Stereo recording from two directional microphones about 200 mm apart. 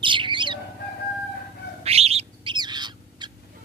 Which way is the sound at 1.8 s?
30° right (ahead or behind).